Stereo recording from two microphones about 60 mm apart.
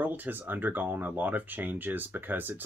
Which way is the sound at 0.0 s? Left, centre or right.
Right.